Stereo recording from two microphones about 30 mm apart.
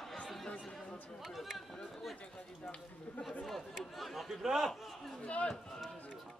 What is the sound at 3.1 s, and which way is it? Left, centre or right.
Chatter, left.